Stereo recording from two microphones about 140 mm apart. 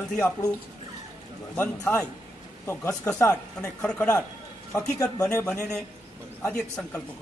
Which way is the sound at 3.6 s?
5° left (ahead or behind).